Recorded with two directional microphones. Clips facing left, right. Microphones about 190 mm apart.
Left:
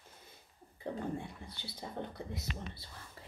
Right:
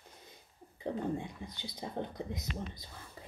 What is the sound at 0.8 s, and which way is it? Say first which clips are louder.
A woman's voice: right 3 dB; 15° right (ahead or behind).